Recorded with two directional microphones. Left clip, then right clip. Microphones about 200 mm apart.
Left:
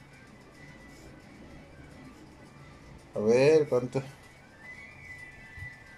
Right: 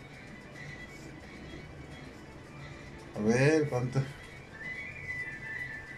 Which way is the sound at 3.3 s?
15° left (ahead or behind).